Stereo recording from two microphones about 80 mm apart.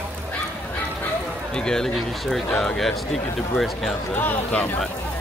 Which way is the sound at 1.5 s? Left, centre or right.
Centre.